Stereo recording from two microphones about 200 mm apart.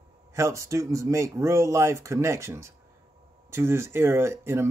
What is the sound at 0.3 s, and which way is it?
A man's voice, 15° right (ahead or behind).